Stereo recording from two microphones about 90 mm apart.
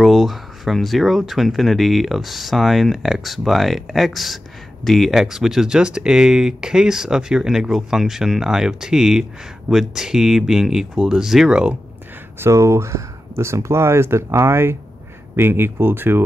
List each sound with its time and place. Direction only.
0.0 s speech: centre (ahead or behind)
12.4 s speech: 35° right (ahead or behind)